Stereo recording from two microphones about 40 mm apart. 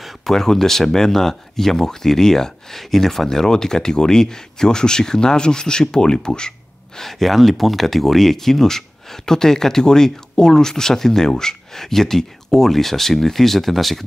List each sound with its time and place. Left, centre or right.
0.0 s speech: centre
7.0 s speech: centre